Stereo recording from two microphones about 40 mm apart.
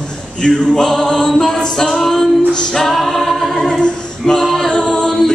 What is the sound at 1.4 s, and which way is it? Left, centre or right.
Music, centre.